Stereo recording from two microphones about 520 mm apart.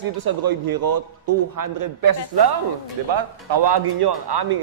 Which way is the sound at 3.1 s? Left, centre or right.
Right.